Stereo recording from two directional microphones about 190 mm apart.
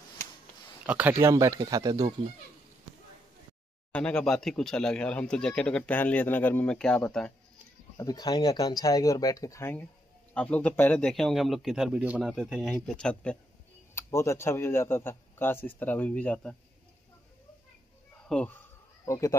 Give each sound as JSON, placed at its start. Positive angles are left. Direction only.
{"t": 0.8, "sound": "speech", "side_deg": -10}
{"t": 3.9, "sound": "a man's voice", "side_deg": 5}
{"t": 8.0, "sound": "a man's voice", "side_deg": 20}
{"t": 18.3, "sound": "a man's voice", "side_deg": 5}
{"t": 19.0, "sound": "a man's voice", "side_deg": 15}